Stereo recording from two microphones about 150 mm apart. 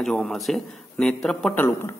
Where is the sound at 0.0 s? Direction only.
Centre (ahead or behind).